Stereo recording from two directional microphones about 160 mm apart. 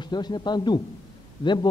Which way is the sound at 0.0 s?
25° left (ahead or behind).